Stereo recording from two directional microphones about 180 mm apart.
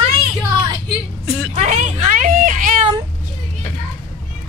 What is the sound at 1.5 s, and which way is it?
A woman's voice, 40° right (ahead or behind).